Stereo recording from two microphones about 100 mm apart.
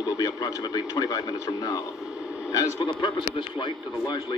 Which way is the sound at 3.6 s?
50° left (ahead or behind).